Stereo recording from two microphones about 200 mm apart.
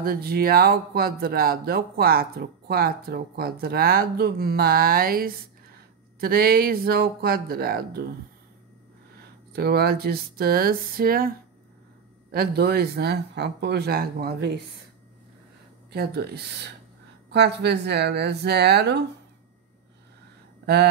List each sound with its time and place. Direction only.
0.0 s speech: 50° right (ahead or behind)
9.5 s speech: 50° right (ahead or behind)
15.9 s speech: 55° right (ahead or behind)
20.6 s speech: 55° right (ahead or behind)